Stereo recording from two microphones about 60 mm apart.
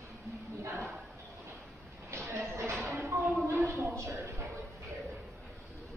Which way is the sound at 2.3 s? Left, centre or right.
Right.